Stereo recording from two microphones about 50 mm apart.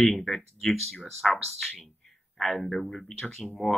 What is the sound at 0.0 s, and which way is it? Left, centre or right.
Speech, centre.